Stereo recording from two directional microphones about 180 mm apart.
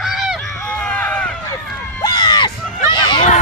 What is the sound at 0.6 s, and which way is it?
Run, 5° left (ahead or behind).